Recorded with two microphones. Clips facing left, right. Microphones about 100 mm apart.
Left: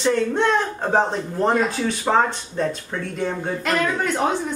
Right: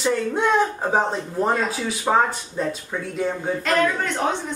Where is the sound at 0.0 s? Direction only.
5° right (ahead or behind).